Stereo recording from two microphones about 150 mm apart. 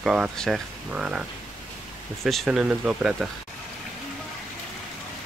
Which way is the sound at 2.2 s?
Centre (ahead or behind).